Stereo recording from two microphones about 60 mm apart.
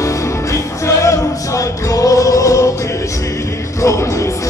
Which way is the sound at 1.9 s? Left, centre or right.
Left.